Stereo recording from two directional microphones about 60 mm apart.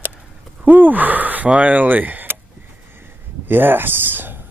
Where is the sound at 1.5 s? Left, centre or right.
Right.